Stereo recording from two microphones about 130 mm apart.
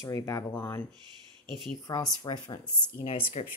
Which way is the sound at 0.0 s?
25° left (ahead or behind).